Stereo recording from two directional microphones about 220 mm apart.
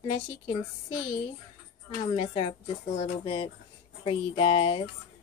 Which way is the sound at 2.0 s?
25° left (ahead or behind).